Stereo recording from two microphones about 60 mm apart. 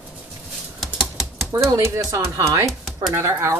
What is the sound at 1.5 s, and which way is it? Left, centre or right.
Speech, right.